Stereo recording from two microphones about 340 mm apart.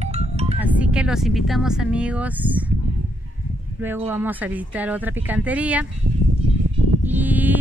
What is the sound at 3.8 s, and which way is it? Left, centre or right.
Speech, centre.